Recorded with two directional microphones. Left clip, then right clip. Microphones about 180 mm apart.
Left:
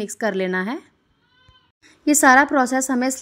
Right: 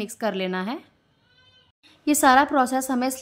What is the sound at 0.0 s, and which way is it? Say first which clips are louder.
Speech: left 4 dB; 15° left (ahead or behind).